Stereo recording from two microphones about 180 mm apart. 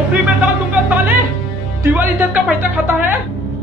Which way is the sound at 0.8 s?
10° right (ahead or behind).